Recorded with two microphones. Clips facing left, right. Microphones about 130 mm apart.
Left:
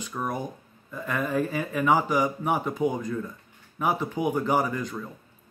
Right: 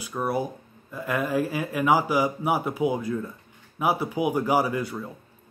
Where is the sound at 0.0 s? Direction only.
10° right (ahead or behind).